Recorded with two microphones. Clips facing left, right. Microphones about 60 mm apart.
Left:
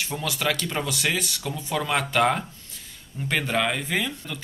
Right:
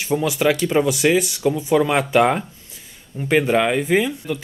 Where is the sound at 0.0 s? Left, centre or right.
Centre.